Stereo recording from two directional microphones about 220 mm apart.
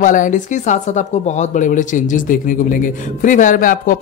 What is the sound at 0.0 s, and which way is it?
Speech, 35° left (ahead or behind).